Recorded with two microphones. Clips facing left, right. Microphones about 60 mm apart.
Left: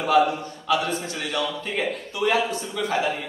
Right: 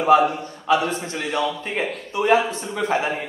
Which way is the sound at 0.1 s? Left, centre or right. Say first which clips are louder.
Right 2 dB; right.